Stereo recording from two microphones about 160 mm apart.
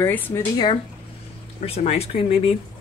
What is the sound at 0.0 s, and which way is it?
Speech, 20° left (ahead or behind).